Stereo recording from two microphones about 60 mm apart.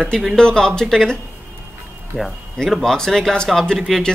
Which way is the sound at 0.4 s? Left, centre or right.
Centre.